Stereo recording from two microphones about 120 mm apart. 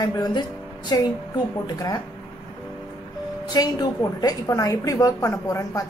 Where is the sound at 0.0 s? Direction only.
35° left (ahead or behind).